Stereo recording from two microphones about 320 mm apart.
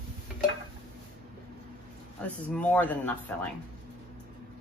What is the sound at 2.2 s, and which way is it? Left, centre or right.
Speech, centre.